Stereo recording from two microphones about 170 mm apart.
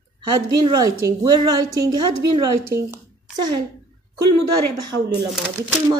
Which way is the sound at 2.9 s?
25° right (ahead or behind).